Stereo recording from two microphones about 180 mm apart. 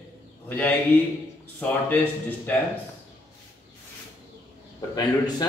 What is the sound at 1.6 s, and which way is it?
Speech, 10° left (ahead or behind).